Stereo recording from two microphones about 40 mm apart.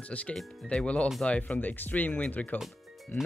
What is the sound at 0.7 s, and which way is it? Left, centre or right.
Speech, left.